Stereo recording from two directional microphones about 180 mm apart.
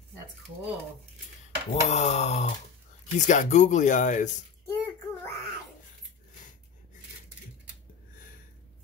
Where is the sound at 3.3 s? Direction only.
40° left (ahead or behind).